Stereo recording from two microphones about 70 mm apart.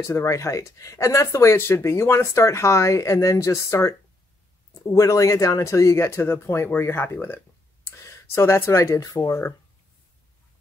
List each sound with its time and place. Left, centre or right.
0.0 s speech: left
7.8 s a sound: left
8.6 s speech: left
9.0 s speech: left